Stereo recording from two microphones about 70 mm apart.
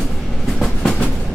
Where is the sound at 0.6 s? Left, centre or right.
Centre.